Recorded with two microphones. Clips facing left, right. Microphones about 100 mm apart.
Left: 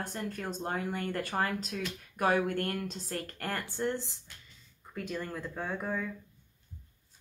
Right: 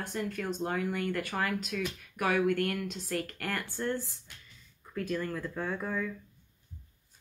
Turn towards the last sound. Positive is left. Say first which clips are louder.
# right 1 dB
turn(degrees=20)  # may be behind; listen again after turning